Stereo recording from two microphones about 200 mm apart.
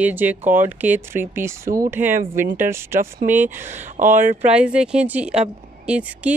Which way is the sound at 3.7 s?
40° right (ahead or behind).